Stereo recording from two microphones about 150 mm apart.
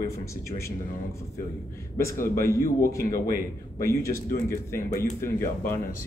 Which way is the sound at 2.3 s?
20° left (ahead or behind).